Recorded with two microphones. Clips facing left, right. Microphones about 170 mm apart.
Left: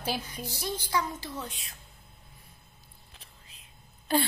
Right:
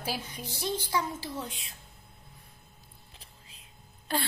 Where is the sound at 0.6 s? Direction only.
25° right (ahead or behind).